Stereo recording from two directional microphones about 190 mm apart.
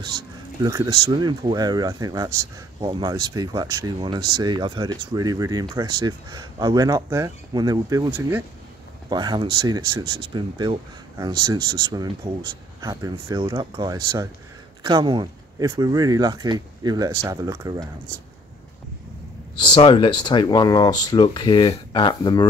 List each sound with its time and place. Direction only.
0.6 s speech: 20° right (ahead or behind)
9.1 s speech: 20° right (ahead or behind)
19.5 s speech: 25° left (ahead or behind)